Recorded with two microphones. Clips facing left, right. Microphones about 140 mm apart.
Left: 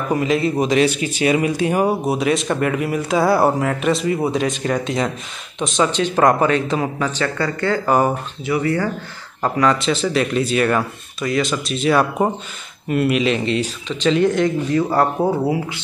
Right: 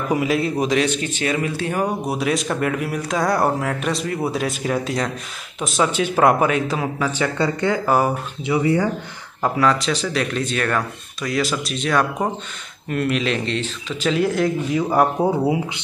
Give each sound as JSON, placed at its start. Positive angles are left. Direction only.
{"t": 0.1, "sound": "a man's voice", "side_deg": -5}
{"t": 2.0, "sound": "speech", "side_deg": 0}
{"t": 7.3, "sound": "speech", "side_deg": -20}
{"t": 9.4, "sound": "speech", "side_deg": 0}